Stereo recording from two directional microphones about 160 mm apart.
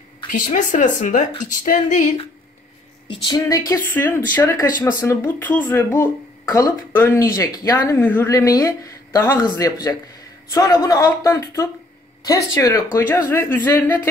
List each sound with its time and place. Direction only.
0.3 s speech: 50° left (ahead or behind)
3.1 s speech: 25° left (ahead or behind)